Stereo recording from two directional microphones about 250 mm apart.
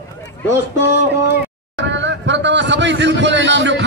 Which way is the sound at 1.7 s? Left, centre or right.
Right.